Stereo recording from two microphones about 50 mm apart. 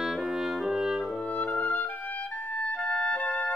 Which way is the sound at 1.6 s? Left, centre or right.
Left.